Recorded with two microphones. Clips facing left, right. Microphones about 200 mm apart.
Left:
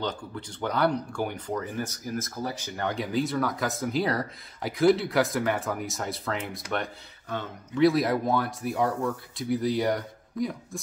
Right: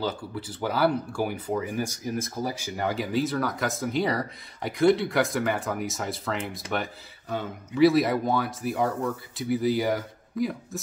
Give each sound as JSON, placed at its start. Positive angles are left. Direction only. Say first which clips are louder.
{"t": 0.0, "sound": "speech", "louder": "right 2 dB", "side_deg": -5}